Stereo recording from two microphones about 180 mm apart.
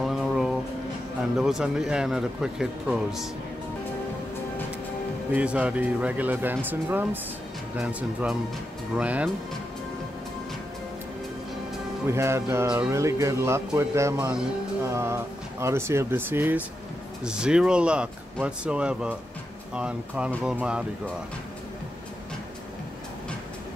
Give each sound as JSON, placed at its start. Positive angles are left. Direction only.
{"t": 0.0, "sound": "a sound", "side_deg": 0}
{"t": 1.4, "sound": "speech", "side_deg": 0}
{"t": 5.3, "sound": "speech", "side_deg": -5}
{"t": 12.1, "sound": "speech", "side_deg": -15}